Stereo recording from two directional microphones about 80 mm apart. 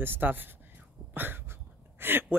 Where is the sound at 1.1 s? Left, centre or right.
Right.